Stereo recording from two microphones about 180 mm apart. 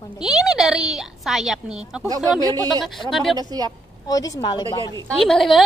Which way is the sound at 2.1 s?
20° right (ahead or behind).